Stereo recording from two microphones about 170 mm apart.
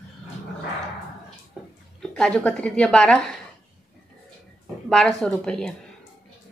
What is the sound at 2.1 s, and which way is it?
A woman's voice, 5° left (ahead or behind).